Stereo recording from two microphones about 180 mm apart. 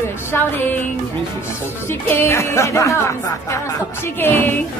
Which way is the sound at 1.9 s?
15° left (ahead or behind).